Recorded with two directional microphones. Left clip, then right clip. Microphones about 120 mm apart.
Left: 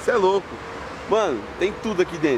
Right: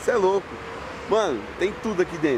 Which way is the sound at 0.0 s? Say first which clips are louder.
Left 2 dB; centre (ahead or behind).